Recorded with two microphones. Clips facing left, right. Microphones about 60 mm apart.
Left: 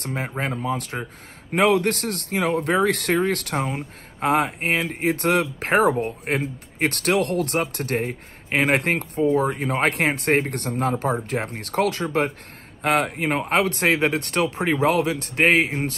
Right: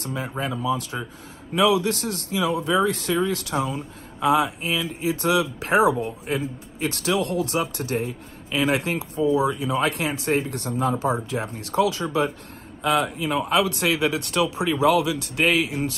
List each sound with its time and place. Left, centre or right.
0.0 s speech: left